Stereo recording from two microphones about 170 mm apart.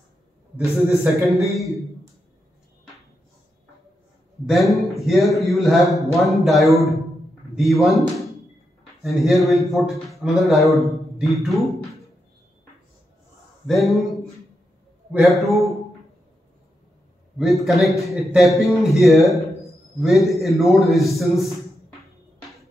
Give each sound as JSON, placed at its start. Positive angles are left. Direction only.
{"t": 0.8, "sound": "a man's voice", "side_deg": 0}
{"t": 4.5, "sound": "a man's voice", "side_deg": 0}
{"t": 9.0, "sound": "a man's voice", "side_deg": 0}
{"t": 13.7, "sound": "a man's voice", "side_deg": 0}
{"t": 17.4, "sound": "a man's voice", "side_deg": 0}
{"t": 19.2, "sound": "a sound", "side_deg": 20}
{"t": 20.0, "sound": "a man's voice", "side_deg": 0}